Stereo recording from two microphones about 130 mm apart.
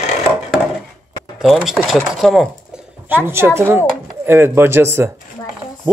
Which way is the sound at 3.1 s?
15° right (ahead or behind).